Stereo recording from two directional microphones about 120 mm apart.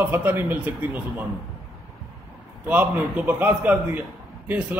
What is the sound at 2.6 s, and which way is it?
A man's voice, 10° right (ahead or behind).